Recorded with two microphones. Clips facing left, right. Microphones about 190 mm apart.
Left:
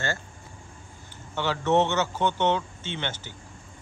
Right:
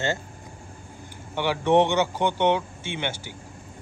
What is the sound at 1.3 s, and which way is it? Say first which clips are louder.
Speech: right 3 dB; 15° right (ahead or behind).